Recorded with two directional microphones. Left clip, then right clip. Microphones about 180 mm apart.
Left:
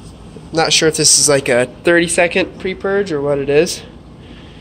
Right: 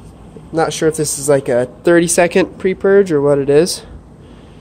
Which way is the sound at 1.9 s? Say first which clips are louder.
Right 2 dB; 50° right (ahead or behind).